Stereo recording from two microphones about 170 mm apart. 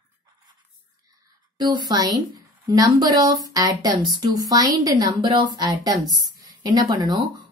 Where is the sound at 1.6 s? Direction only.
25° right (ahead or behind).